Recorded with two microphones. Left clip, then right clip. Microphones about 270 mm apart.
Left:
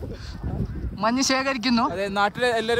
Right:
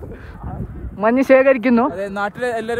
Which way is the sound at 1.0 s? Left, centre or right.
Centre.